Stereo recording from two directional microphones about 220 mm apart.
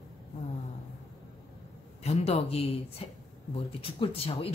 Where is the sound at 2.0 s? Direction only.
30° left (ahead or behind).